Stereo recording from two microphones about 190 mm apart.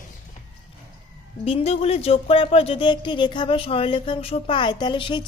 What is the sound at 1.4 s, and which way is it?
A woman's voice, 30° left (ahead or behind).